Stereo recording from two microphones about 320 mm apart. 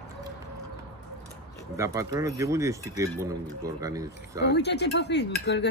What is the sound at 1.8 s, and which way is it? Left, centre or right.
Speech, centre.